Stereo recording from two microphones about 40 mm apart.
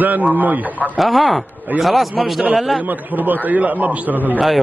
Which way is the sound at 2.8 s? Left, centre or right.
Right.